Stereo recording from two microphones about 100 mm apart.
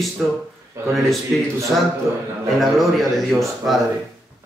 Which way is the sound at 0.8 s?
30° right (ahead or behind).